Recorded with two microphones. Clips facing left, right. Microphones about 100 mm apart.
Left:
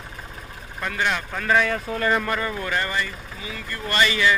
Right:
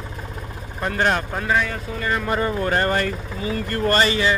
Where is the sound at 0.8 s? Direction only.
40° right (ahead or behind).